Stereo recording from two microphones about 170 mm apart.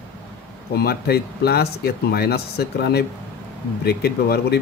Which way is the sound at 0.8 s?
70° left (ahead or behind).